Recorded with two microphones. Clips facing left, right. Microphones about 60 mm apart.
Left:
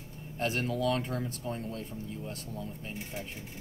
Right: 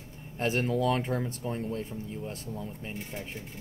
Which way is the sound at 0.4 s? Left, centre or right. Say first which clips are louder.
Right 3 dB; right.